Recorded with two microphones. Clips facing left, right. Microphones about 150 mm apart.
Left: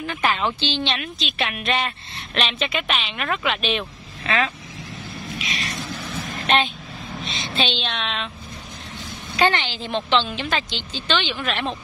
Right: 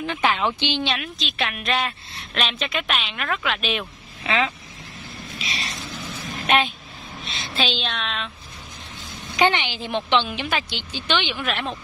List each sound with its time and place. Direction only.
0.0 s a woman's voice: 15° right (ahead or behind)
0.9 s a woman's voice: centre (ahead or behind)
4.2 s vehicle: 15° right (ahead or behind)
5.4 s a sound: 30° right (ahead or behind)
6.4 s a woman's voice: 5° right (ahead or behind)
9.4 s a woman's voice: 15° right (ahead or behind)